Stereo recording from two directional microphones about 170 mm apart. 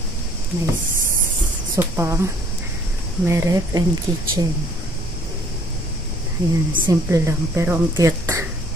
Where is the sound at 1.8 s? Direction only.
15° right (ahead or behind).